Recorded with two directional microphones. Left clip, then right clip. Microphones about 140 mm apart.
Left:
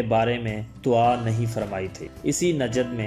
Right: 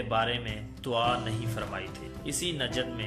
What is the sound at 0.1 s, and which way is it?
Speech, 40° left (ahead or behind).